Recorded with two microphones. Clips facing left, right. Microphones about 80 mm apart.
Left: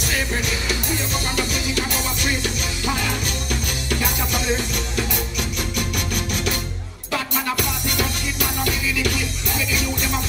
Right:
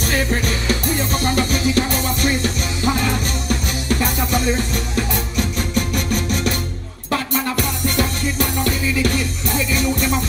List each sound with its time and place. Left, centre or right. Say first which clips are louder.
0.0 s music: right 4 dB; right